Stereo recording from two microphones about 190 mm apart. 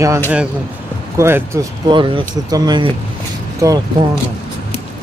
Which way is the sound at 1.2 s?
15° right (ahead or behind).